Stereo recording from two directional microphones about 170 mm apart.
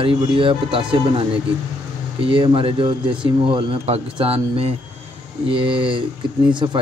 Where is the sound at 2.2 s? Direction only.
30° right (ahead or behind).